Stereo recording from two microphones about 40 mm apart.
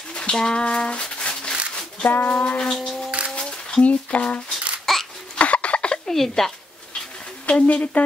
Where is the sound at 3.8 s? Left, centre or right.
Left.